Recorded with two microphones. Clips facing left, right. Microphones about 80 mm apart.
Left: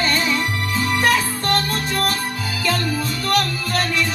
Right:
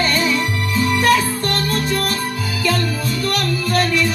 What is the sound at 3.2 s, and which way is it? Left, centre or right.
Music, left.